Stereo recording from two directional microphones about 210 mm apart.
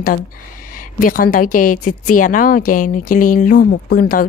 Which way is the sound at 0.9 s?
40° left (ahead or behind).